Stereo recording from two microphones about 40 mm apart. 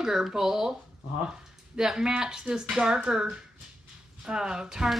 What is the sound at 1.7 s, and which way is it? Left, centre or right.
Speech, centre.